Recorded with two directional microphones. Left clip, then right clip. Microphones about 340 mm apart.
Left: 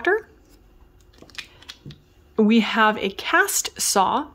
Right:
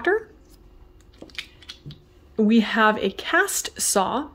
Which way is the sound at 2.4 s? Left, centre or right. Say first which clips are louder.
Left 1 dB; centre.